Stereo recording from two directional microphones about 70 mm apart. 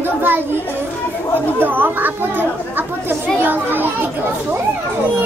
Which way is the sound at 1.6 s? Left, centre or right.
Right.